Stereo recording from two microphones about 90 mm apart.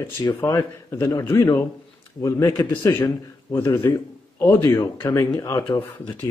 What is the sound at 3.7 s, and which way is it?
Speech, 25° left (ahead or behind).